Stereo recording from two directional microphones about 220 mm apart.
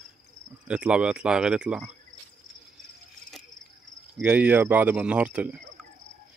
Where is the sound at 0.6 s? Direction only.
5° right (ahead or behind).